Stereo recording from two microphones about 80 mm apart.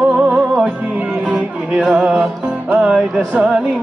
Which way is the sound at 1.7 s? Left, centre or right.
Centre.